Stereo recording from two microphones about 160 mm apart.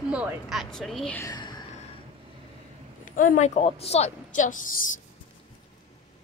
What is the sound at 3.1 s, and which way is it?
A woman's voice, 55° left (ahead or behind).